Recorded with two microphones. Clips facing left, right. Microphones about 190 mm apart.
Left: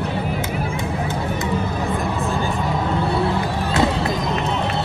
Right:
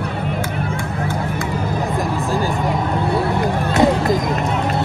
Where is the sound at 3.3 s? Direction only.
15° right (ahead or behind).